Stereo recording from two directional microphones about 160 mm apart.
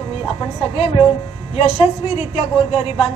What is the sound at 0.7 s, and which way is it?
A woman's voice, 35° left (ahead or behind).